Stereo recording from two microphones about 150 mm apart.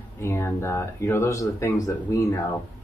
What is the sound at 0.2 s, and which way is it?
Speech, 15° left (ahead or behind).